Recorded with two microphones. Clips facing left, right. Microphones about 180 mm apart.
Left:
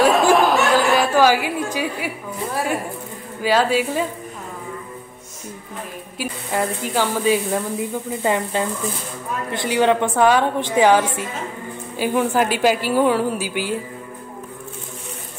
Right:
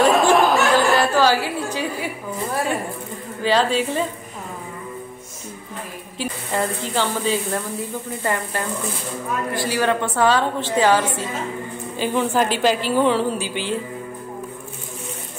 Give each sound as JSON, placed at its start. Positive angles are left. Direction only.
{"t": 0.0, "sound": "chatter", "side_deg": 0}
{"t": 1.1, "sound": "a woman's voice", "side_deg": 15}
{"t": 6.1, "sound": "a woman's voice", "side_deg": 10}